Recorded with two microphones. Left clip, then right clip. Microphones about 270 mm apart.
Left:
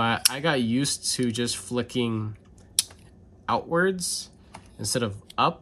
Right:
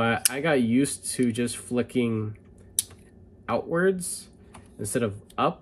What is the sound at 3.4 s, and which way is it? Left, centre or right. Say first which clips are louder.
Speech: left 1 dB; centre.